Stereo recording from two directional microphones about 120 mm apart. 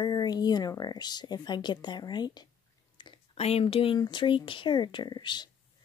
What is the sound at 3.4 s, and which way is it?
Speech, 55° left (ahead or behind).